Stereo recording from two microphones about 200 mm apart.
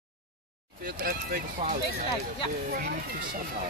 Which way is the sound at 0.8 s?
45° right (ahead or behind).